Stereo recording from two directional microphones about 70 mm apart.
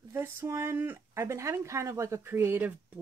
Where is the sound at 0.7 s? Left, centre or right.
Right.